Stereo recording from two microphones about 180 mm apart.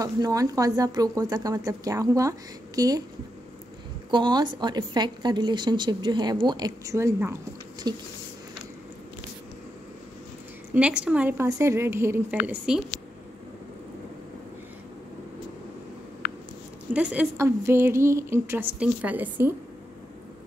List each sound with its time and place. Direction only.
0.0 s a woman's voice: 20° right (ahead or behind)
4.1 s a woman's voice: 25° right (ahead or behind)
10.7 s a woman's voice: 5° right (ahead or behind)
16.2 s a sound: 55° left (ahead or behind)
16.9 s a woman's voice: 10° right (ahead or behind)